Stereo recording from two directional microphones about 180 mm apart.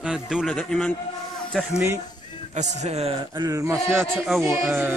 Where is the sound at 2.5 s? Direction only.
40° right (ahead or behind).